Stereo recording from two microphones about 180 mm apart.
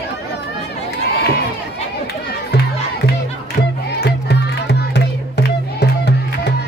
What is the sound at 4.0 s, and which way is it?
Music, 70° left (ahead or behind).